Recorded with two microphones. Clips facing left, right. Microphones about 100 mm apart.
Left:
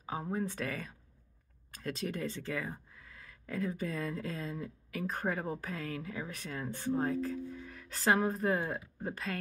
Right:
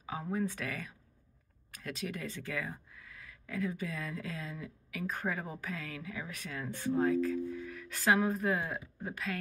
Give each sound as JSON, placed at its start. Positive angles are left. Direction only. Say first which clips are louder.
{"t": 0.2, "sound": "speech", "louder": "right 2 dB", "side_deg": 30}